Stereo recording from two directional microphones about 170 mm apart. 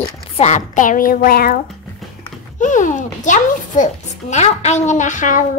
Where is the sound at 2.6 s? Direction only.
50° left (ahead or behind).